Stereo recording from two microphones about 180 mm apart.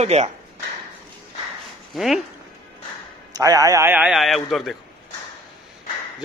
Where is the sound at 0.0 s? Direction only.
35° right (ahead or behind).